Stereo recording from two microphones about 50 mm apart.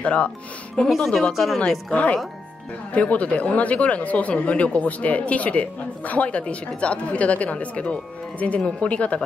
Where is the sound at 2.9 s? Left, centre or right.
Left.